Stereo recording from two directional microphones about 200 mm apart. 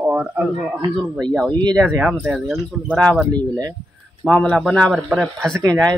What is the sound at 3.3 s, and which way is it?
Speech, 20° right (ahead or behind).